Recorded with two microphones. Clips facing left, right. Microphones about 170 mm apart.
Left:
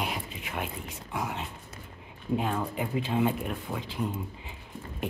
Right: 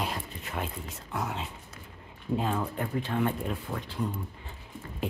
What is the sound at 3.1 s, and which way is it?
Speech, 15° left (ahead or behind).